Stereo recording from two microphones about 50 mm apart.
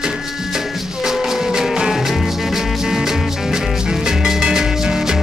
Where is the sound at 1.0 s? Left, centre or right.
Centre.